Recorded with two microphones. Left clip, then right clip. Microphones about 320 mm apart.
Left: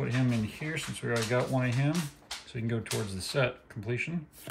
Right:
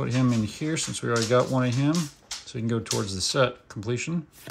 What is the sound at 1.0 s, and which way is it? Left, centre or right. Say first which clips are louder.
Speech: right 7 dB; right.